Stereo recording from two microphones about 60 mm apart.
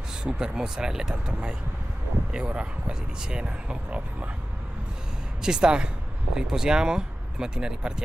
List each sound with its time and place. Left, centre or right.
0.2 s speech: centre
5.4 s speech: centre